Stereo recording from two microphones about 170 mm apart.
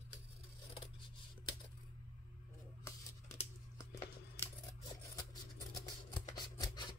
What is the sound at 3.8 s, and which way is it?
Scissors, 20° left (ahead or behind).